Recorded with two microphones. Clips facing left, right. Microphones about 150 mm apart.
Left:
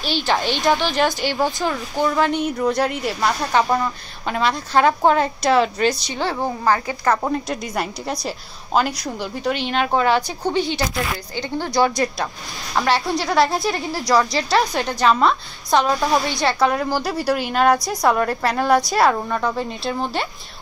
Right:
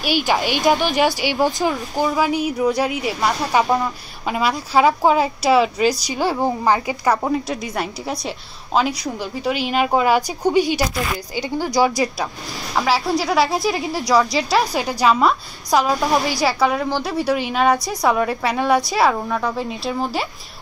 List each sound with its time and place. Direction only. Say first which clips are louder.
0.0 s a woman's voice: right 2 dB; 10° right (ahead or behind)
3.6 s a woman's voice: right 1 dB; 15° right (ahead or behind)
4.3 s a woman's voice: even; 5° right (ahead or behind)